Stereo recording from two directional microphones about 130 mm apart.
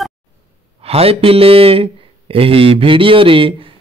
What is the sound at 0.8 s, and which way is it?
Speech, 50° right (ahead or behind).